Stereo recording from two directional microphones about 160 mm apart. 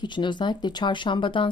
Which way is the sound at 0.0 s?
30° left (ahead or behind).